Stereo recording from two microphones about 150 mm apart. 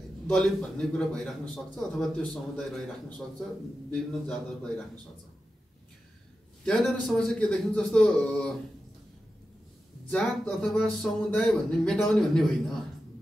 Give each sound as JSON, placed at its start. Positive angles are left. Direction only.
{"t": 0.3, "sound": "speech", "side_deg": 5}
{"t": 3.9, "sound": "a man's voice", "side_deg": 5}
{"t": 6.6, "sound": "speech", "side_deg": 5}
{"t": 10.1, "sound": "speech", "side_deg": 5}